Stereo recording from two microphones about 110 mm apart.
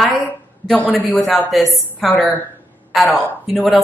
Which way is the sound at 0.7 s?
15° left (ahead or behind).